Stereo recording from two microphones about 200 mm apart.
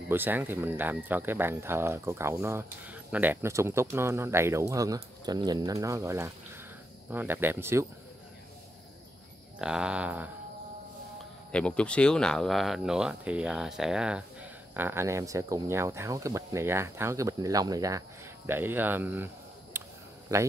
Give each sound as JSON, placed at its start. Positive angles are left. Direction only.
{"t": 0.1, "sound": "speech", "side_deg": -10}
{"t": 9.6, "sound": "speech", "side_deg": -5}
{"t": 11.5, "sound": "speech", "side_deg": 5}